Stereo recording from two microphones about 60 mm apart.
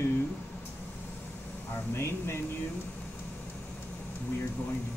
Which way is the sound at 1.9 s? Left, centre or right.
Left.